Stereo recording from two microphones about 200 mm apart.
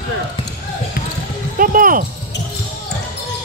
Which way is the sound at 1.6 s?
45° right (ahead or behind).